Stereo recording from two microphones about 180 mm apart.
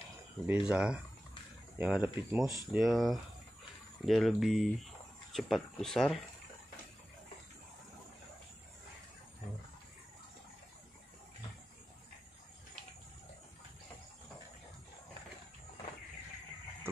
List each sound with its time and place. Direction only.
0.5 s speech: 5° right (ahead or behind)
2.4 s speech: 20° left (ahead or behind)
2.7 s speech: centre (ahead or behind)